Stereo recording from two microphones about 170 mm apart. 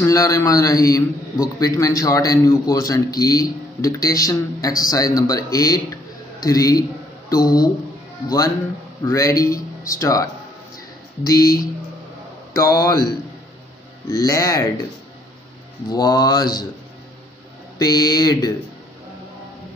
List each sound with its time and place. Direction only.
0.0 s a man's voice: 20° left (ahead or behind)
9.0 s a man's voice: 20° left (ahead or behind)
14.1 s a man's voice: 20° left (ahead or behind)
15.9 s a man's voice: 25° left (ahead or behind)
17.7 s a man's voice: 25° left (ahead or behind)